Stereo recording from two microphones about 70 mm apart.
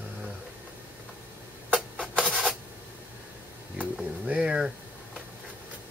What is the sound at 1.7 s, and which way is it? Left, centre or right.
Printer, centre.